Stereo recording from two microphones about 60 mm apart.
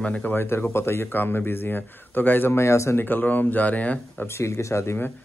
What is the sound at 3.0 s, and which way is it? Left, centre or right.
Speech, left.